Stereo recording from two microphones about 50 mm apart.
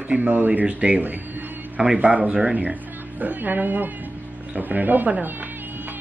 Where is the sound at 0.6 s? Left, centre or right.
Right.